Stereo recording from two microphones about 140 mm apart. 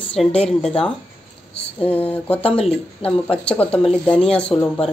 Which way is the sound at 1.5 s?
10° left (ahead or behind).